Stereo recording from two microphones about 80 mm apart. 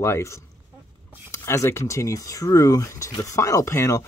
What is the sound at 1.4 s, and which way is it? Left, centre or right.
Speech, left.